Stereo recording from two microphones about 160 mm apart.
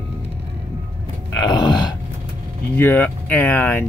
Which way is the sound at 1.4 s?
25° left (ahead or behind).